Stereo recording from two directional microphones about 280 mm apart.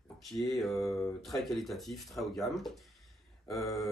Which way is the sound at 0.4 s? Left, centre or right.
Centre.